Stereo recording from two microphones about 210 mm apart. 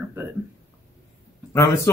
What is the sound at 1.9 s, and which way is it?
Speech, 15° left (ahead or behind).